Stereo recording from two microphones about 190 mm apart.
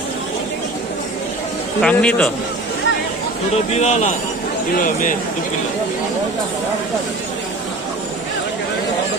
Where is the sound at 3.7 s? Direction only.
35° left (ahead or behind).